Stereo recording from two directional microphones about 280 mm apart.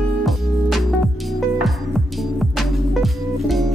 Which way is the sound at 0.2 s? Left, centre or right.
Centre.